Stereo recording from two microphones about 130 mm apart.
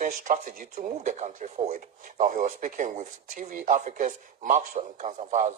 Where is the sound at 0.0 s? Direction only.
90° right; by 5.5 s 70° right (ahead or behind).